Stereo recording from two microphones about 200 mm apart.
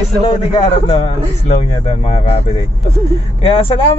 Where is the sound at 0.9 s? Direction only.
30° left (ahead or behind).